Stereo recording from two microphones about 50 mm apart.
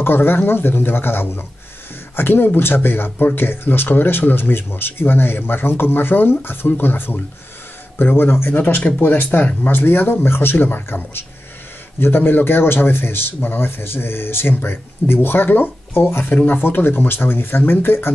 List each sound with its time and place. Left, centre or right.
0.0 s speech: left